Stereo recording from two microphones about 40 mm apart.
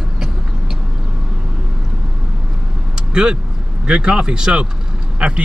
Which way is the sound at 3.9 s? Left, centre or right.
Right.